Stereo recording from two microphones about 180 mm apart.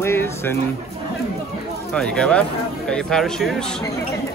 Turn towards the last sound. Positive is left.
turn(degrees=5)  # may be behind; listen again after turning